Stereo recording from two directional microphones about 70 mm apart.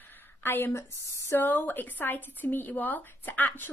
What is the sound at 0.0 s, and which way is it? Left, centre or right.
A woman's voice, left.